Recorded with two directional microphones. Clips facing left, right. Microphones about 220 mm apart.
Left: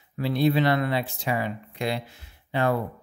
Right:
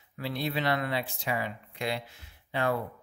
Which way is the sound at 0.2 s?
35° left (ahead or behind).